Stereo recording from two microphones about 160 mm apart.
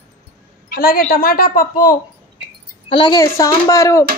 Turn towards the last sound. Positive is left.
turn(degrees=20)  # may be behind; listen again after turning